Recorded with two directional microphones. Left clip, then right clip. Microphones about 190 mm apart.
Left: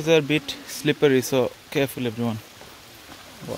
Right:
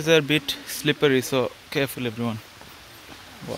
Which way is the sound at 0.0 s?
5° left (ahead or behind).